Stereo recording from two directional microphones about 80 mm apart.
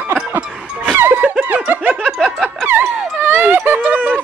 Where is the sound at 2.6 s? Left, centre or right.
Right.